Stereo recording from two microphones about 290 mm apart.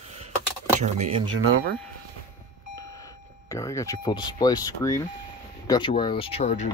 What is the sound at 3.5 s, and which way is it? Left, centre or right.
Speech, centre.